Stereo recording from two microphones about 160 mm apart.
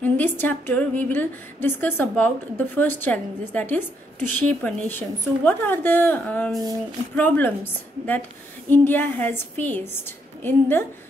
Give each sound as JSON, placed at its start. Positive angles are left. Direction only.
{"t": 0.0, "sound": "a woman's voice", "side_deg": 10}